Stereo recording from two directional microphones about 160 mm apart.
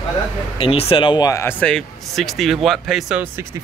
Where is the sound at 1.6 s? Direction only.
5° left (ahead or behind).